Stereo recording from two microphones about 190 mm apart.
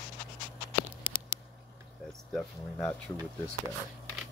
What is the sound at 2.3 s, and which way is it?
Speech, 10° left (ahead or behind).